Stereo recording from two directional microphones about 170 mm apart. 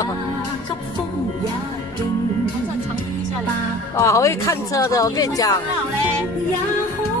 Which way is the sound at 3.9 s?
15° left (ahead or behind).